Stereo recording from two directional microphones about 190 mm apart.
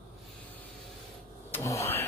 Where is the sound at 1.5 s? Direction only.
15° left (ahead or behind).